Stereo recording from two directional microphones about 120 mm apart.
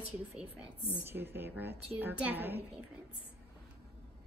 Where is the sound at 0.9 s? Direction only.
15° right (ahead or behind).